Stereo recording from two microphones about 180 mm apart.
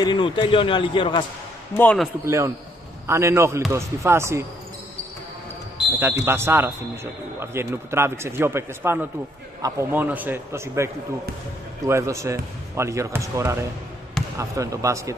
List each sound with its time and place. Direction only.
0.0 s a man's voice: 25° left (ahead or behind)
1.8 s speech: 5° left (ahead or behind)
2.2 s a man's voice: 15° right (ahead or behind)
5.9 s a man's voice: 10° right (ahead or behind)